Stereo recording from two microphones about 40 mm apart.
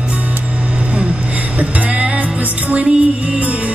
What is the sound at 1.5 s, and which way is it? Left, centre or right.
Music, right.